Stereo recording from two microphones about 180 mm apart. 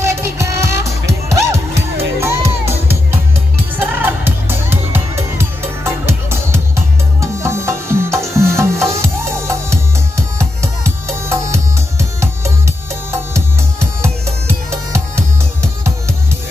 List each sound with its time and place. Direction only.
0.0 s music: 15° right (ahead or behind)